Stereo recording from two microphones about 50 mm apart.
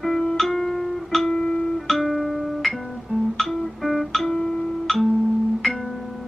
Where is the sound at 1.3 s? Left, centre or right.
Centre.